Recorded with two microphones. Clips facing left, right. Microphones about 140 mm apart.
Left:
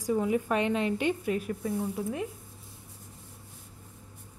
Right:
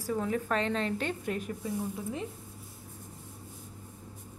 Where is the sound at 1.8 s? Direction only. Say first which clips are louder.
Left 3 dB; 15° left (ahead or behind).